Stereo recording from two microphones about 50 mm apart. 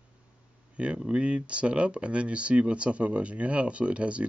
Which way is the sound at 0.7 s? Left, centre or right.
Right.